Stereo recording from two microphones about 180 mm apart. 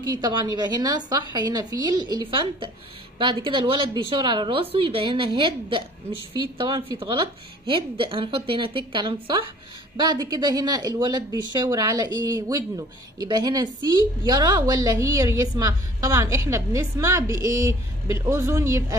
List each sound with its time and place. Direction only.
0.2 s speech: 25° right (ahead or behind)